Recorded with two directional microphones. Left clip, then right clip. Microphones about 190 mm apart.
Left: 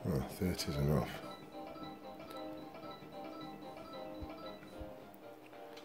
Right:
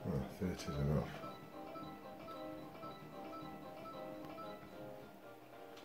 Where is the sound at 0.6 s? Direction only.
40° left (ahead or behind).